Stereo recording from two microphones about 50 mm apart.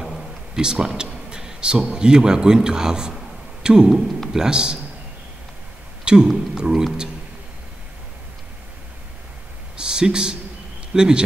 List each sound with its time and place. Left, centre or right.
0.6 s a man's voice: centre
6.1 s a man's voice: centre
9.8 s a sound: centre
10.9 s speech: centre